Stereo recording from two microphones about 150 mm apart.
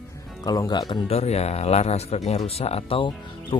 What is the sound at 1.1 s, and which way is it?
Speech, 45° left (ahead or behind).